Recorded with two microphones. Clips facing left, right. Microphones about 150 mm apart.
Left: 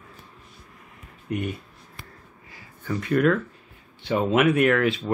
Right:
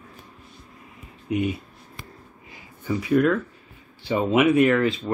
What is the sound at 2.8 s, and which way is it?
Speech, 5° right (ahead or behind).